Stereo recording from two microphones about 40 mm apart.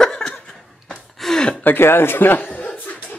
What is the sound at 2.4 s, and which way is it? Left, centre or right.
Chuckle, left.